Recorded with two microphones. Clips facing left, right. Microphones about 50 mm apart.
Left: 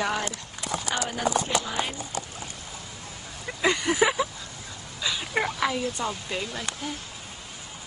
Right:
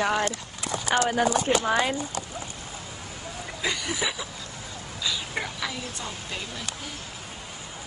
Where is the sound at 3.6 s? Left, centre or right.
Left.